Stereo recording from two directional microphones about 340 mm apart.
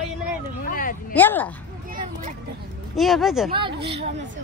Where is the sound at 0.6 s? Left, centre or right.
Left.